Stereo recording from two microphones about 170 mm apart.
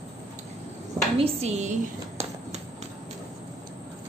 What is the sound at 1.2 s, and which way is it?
Speech, 40° right (ahead or behind).